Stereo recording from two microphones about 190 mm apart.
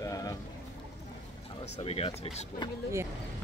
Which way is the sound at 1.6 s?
35° left (ahead or behind).